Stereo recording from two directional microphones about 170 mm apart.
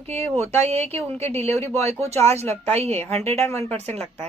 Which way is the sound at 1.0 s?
15° left (ahead or behind).